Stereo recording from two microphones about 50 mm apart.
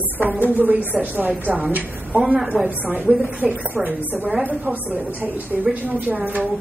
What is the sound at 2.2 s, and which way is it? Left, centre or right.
Speech, centre.